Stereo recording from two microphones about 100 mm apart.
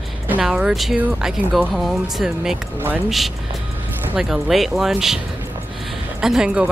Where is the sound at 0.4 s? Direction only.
5° right (ahead or behind).